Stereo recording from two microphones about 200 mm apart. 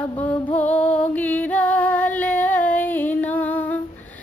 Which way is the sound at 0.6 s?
10° left (ahead or behind).